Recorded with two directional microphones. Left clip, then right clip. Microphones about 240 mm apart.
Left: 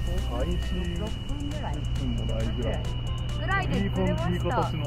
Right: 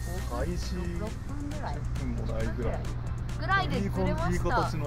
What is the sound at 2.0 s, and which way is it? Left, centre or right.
Speech, centre.